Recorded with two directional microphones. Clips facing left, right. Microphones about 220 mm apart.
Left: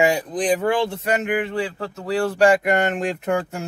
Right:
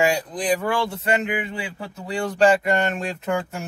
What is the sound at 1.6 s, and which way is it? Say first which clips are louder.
Speech: left 6 dB; centre (ahead or behind).